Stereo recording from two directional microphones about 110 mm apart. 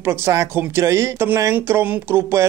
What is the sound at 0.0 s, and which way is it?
Speech, 25° right (ahead or behind).